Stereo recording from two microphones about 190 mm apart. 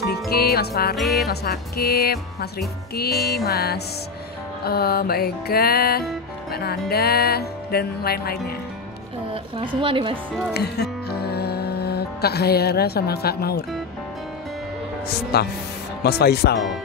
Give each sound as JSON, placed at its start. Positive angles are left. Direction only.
{"t": 0.0, "sound": "music", "side_deg": 55}
{"t": 0.9, "sound": "music", "side_deg": 0}
{"t": 1.2, "sound": "music", "side_deg": 55}
{"t": 9.8, "sound": "speech", "side_deg": -25}
{"t": 10.5, "sound": "music", "side_deg": 60}
{"t": 15.3, "sound": "music", "side_deg": 55}